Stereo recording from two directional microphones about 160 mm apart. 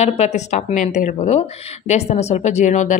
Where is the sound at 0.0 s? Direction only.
40° left (ahead or behind).